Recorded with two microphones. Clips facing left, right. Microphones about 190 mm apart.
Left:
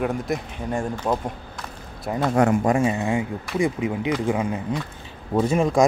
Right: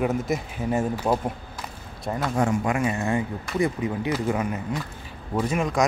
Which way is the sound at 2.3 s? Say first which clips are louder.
Left 5 dB; 60° left (ahead or behind).